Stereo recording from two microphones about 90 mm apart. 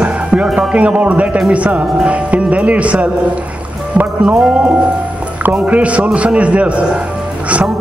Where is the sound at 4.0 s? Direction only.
25° right (ahead or behind).